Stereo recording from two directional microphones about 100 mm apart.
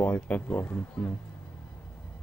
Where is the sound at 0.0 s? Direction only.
15° left (ahead or behind).